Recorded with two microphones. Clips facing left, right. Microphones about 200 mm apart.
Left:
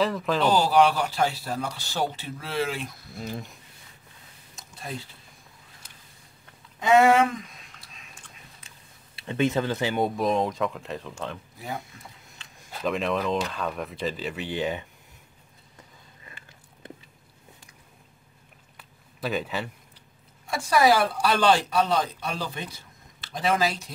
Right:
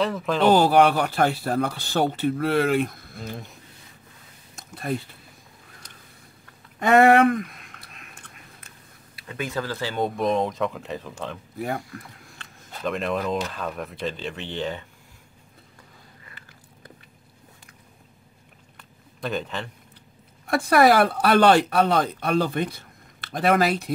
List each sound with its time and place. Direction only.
0.0 s speech: centre (ahead or behind)
0.5 s speech: 55° right (ahead or behind)
4.6 s a sound: 55° right (ahead or behind)
6.8 s a sound: 60° right (ahead or behind)
9.1 s speech: 25° left (ahead or behind)
10.0 s speech: centre (ahead or behind)
11.8 s speech: 25° left (ahead or behind)
12.7 s speech: centre (ahead or behind)
16.8 s biting: 25° left (ahead or behind)
18.8 s a sound: 5° left (ahead or behind)
20.4 s speech: 60° right (ahead or behind)